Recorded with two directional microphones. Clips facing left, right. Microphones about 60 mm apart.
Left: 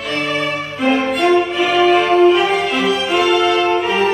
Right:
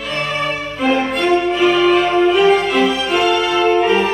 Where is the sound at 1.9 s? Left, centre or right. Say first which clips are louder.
Left 2 dB; centre.